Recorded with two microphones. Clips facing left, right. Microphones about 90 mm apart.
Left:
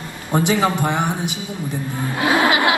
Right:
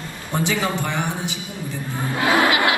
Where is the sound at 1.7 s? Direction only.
20° left (ahead or behind).